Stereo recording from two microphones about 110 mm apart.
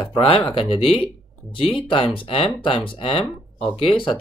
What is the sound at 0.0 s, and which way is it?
Speech, 50° left (ahead or behind).